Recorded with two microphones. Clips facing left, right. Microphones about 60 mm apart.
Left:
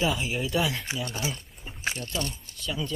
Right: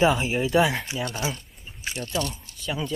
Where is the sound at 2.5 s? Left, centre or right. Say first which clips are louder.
Even; left.